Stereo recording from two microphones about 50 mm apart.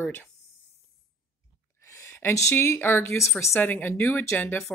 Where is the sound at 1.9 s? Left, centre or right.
Left.